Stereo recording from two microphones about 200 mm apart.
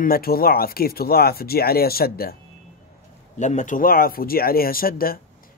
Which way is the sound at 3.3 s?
35° left (ahead or behind).